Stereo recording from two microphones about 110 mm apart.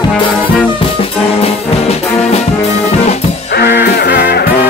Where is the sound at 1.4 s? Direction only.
70° left (ahead or behind).